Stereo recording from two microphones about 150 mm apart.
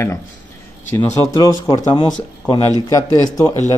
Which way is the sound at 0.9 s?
20° left (ahead or behind).